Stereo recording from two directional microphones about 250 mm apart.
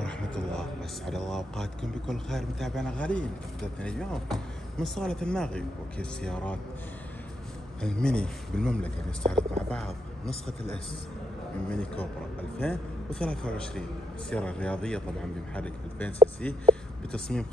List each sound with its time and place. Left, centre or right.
0.0 s speech: centre
7.8 s speech: centre